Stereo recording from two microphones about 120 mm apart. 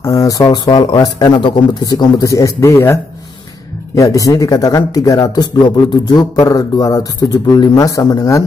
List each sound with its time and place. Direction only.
0.0 s a man's voice: 30° left (ahead or behind)